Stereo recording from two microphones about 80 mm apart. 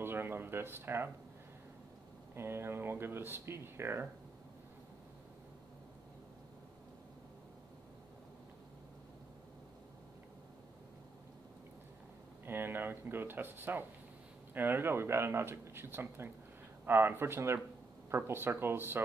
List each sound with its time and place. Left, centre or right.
0.0 s speech: right
2.3 s speech: right
12.4 s speech: right